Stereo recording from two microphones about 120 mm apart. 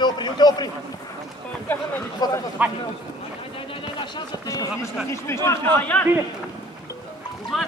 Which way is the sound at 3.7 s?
45° left (ahead or behind).